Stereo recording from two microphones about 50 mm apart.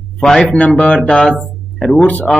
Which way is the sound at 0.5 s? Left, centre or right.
Left.